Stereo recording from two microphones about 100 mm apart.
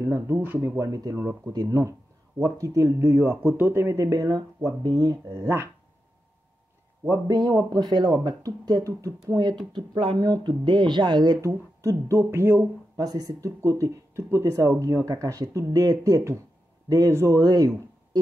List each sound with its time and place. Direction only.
0.0 s speech: 30° right (ahead or behind)
1.8 s a sound: 30° right (ahead or behind)
2.6 s speech: 35° right (ahead or behind)
7.1 s speech: 40° right (ahead or behind)
9.7 s speech: 55° right (ahead or behind)
10.1 s speech: 40° right (ahead or behind)
11.4 s speech: 30° right (ahead or behind)
12.9 s speech: 40° right (ahead or behind)
17.4 s speech: 40° right (ahead or behind)